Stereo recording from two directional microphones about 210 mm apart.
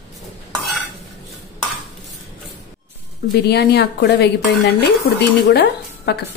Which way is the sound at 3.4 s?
50° left (ahead or behind).